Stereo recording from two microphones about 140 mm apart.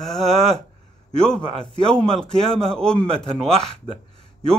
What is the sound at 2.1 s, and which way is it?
Speech, 5° left (ahead or behind).